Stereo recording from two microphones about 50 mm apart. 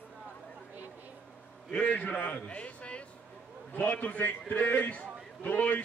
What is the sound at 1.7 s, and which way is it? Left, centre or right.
A man's voice, left.